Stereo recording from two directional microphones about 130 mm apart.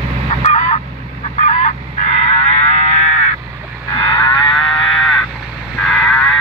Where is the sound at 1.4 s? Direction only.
65° left (ahead or behind).